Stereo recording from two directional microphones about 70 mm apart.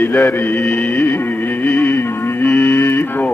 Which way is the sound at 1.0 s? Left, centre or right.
Left.